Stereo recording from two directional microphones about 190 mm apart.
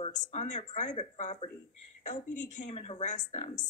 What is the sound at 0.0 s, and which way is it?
A woman's voice, 40° left (ahead or behind).